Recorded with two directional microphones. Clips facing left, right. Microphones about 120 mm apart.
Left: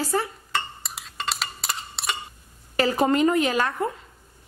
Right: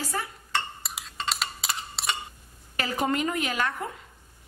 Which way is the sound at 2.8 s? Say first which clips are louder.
Left 7 dB; 30° left (ahead or behind).